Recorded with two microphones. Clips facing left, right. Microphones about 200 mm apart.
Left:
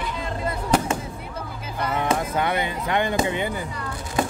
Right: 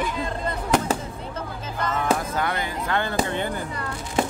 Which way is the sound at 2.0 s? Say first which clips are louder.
Left 1 dB; 20° left (ahead or behind).